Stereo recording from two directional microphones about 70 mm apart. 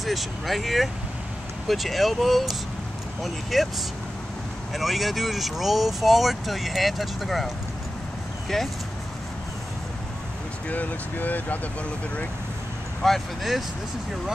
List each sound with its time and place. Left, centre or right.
0.0 s speech: centre
4.7 s speech: centre
10.7 s speech: left
13.0 s speech: centre